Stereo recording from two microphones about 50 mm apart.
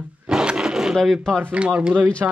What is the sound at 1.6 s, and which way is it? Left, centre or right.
Speech, right.